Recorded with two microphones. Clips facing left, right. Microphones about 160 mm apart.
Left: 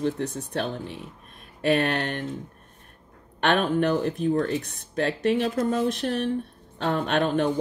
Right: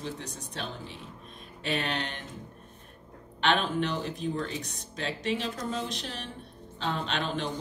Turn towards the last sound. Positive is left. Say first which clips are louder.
# left 9 dB
turn(degrees=55)  # may be behind; listen again after turning